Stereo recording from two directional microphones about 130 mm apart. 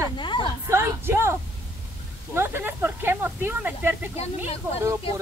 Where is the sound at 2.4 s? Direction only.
15° right (ahead or behind).